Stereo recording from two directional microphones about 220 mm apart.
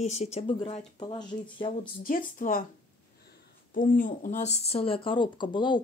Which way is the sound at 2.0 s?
40° left (ahead or behind).